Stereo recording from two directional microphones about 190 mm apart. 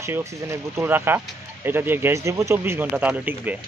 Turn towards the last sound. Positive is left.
turn(degrees=-10)  # may be behind; listen again after turning